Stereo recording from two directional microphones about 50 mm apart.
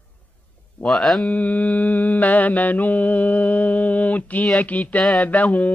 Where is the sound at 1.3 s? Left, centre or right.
Left.